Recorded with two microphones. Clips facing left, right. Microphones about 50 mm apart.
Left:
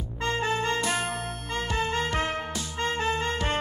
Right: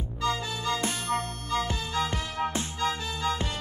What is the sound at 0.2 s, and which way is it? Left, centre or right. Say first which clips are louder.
Music: left 3 dB; left.